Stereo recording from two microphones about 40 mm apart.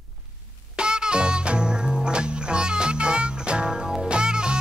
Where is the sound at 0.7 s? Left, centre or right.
Right.